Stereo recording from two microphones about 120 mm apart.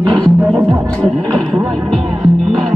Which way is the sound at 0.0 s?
45° right (ahead or behind).